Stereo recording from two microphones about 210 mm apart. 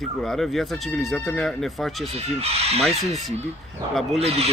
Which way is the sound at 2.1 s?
30° right (ahead or behind).